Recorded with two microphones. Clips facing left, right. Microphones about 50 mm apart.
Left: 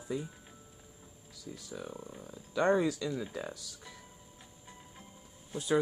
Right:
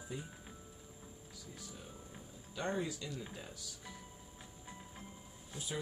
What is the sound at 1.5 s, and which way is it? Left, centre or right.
Speech, left.